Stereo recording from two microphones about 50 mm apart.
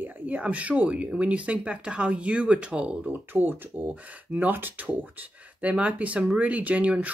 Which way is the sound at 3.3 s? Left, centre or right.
Right.